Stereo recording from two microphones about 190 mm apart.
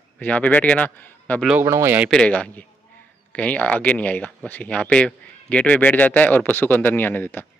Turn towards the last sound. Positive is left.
turn(degrees=10)  # may be behind; listen again after turning